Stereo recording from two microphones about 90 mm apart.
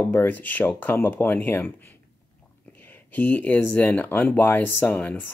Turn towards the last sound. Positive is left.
turn(degrees=20)  # may be behind; listen again after turning